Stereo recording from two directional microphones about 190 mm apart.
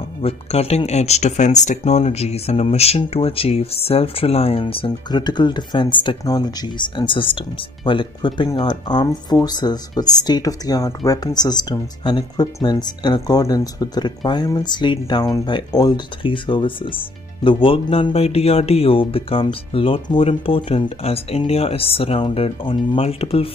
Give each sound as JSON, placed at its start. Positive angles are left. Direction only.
{"t": 0.2, "sound": "speech", "side_deg": 30}